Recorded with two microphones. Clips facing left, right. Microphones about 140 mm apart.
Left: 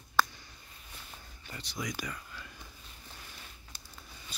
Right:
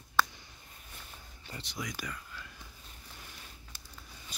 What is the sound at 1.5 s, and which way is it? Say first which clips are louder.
Speech: right 1 dB; 25° right (ahead or behind).